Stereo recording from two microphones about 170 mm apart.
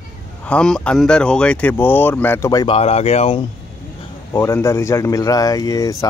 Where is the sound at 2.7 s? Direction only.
35° left (ahead or behind).